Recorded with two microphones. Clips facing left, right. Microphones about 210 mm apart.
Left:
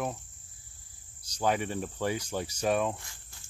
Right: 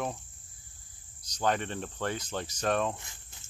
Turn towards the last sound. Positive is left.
turn(degrees=-20)  # may be behind; listen again after turning